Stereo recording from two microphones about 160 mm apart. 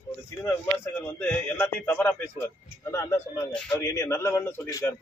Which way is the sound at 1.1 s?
15° left (ahead or behind).